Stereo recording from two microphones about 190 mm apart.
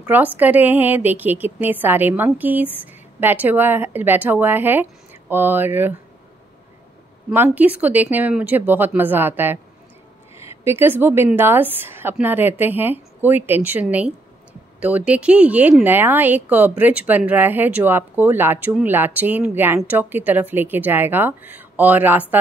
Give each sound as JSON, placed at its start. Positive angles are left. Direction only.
{"t": 0.0, "sound": "speech", "side_deg": -10}
{"t": 7.2, "sound": "speech", "side_deg": -10}